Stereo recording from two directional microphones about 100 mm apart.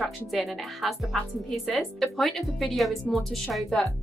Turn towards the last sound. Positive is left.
turn(degrees=0)  # may be behind; listen again after turning